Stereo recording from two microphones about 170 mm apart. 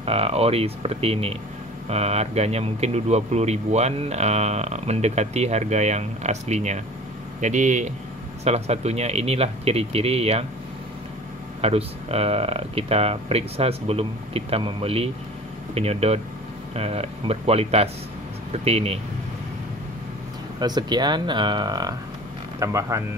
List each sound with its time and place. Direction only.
0.0 s speech: 35° right (ahead or behind)
11.6 s speech: 35° right (ahead or behind)
20.5 s speech: 25° right (ahead or behind)